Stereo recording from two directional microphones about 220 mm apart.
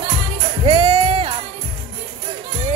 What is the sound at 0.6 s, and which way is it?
Music, 25° right (ahead or behind).